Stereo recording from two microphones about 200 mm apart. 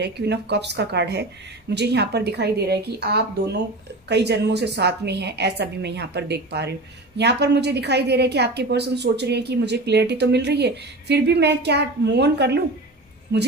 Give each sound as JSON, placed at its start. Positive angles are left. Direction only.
{"t": 0.0, "sound": "a woman's voice", "side_deg": -55}